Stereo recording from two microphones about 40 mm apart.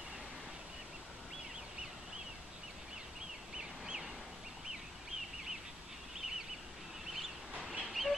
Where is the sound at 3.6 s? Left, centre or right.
Centre.